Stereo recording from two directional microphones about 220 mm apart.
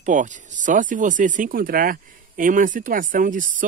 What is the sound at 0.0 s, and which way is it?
Speech, 35° right (ahead or behind).